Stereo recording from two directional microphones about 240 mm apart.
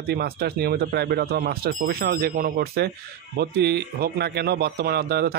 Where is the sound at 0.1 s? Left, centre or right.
Right.